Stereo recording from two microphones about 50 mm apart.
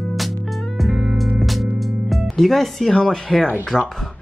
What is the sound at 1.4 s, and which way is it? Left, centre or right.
Music, centre.